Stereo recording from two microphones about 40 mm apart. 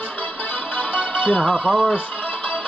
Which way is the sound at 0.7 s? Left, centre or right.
Left.